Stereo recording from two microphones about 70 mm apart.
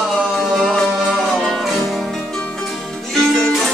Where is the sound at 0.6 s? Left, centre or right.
Centre.